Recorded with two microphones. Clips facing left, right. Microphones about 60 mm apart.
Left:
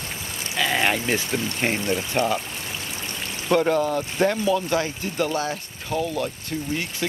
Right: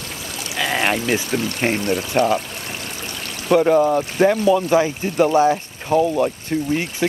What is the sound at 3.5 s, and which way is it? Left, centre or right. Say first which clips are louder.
Speech: right 6 dB; centre.